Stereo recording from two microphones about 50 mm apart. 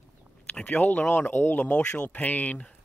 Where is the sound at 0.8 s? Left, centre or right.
Left.